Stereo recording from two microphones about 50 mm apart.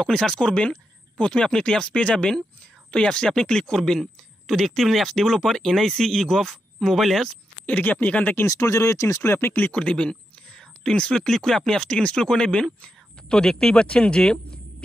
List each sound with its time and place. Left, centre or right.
0.0 s speech: centre
7.6 s speech: left
8.5 s speech: left
9.6 s speech: left